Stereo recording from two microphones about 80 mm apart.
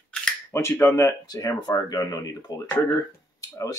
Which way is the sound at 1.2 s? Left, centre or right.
Left.